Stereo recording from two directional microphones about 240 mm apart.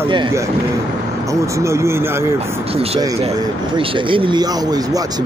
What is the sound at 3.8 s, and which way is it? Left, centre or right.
Speech, right.